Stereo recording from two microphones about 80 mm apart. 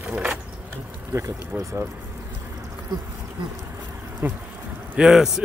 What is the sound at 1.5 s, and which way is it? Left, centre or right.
Speech, centre.